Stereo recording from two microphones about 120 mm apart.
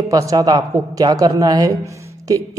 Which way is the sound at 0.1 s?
30° right (ahead or behind).